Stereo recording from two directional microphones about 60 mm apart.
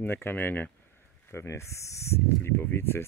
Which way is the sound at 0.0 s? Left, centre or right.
Left.